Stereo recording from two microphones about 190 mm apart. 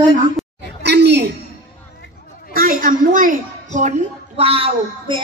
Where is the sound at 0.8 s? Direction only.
60° right (ahead or behind).